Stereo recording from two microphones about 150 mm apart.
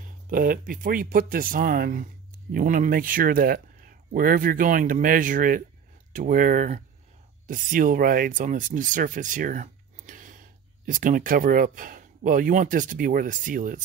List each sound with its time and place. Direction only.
0.0 s speech: 70° right (ahead or behind)